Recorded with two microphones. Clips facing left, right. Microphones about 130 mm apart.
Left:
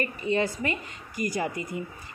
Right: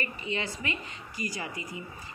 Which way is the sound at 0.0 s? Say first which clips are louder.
Left 8 dB; 45° left (ahead or behind).